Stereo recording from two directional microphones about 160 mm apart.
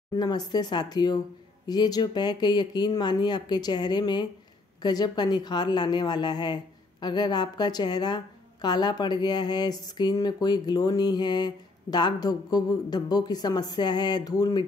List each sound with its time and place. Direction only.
0.1 s a woman's voice: 25° left (ahead or behind)